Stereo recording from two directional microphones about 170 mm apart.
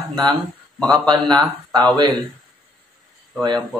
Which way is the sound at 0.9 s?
25° right (ahead or behind).